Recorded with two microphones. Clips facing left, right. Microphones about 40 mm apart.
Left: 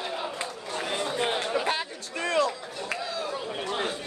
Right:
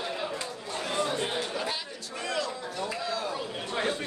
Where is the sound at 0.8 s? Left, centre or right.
Centre.